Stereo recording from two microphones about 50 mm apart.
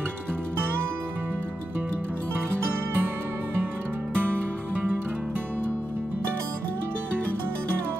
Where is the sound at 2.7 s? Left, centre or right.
Right.